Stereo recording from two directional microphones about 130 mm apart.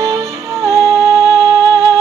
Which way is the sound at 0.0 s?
25° right (ahead or behind).